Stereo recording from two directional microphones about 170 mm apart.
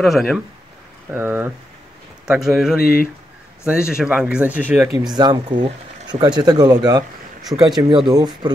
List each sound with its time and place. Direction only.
0.0 s speech: centre (ahead or behind)
1.1 s speech: 10° right (ahead or behind)
2.8 s speech: 60° left (ahead or behind)
3.6 s speech: 5° right (ahead or behind)
4.9 s speech: 25° right (ahead or behind)